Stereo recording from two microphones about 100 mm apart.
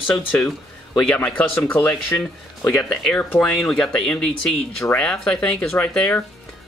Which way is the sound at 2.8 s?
5° left (ahead or behind).